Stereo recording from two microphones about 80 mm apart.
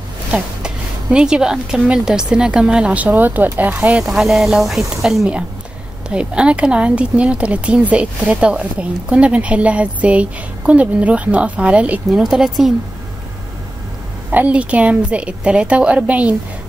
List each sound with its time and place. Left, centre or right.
0.3 s speech: centre
4.0 s speech: centre
12.1 s speech: centre
14.3 s speech: centre